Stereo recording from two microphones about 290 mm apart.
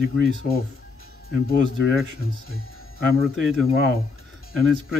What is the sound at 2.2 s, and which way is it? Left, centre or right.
Speech, left.